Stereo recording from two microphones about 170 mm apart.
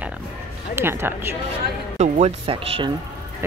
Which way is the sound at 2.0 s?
40° right (ahead or behind).